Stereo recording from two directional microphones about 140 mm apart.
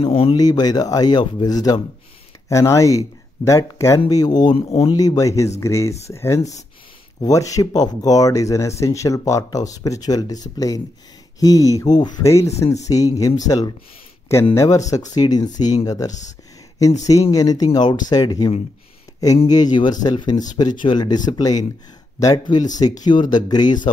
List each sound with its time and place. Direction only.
0.0 s speech: 40° left (ahead or behind)
0.4 s speech: 30° left (ahead or behind)
4.6 s speech: 45° left (ahead or behind)
4.9 s speech: 25° left (ahead or behind)
12.6 s speech: 55° left (ahead or behind)
12.9 s speech: 25° left (ahead or behind)
16.1 s speech: 60° left (ahead or behind)
17.3 s speech: 25° left (ahead or behind)
19.5 s speech: 30° left (ahead or behind)